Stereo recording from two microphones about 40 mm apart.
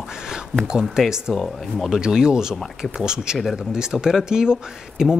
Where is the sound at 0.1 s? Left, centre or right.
Centre.